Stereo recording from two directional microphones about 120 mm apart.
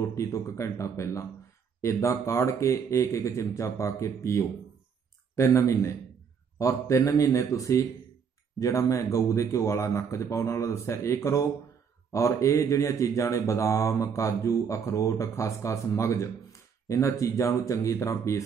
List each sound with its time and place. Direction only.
0.0 s speech: 25° left (ahead or behind)